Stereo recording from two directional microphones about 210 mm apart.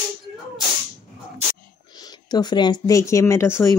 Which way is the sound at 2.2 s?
20° left (ahead or behind).